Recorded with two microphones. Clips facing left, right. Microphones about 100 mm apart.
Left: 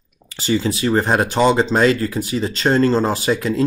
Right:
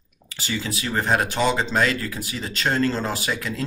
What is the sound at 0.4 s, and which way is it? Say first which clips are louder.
Speech: left 10 dB; 30° left (ahead or behind).